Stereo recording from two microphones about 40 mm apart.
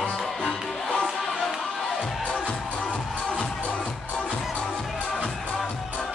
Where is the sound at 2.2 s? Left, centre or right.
Left.